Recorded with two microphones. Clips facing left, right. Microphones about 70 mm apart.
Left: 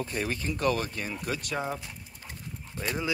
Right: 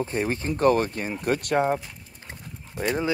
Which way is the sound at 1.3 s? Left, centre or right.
Right.